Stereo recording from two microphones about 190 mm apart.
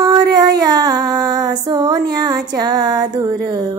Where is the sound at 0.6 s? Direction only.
20° right (ahead or behind).